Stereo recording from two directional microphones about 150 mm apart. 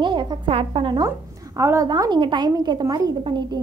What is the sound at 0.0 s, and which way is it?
Speech, 30° right (ahead or behind).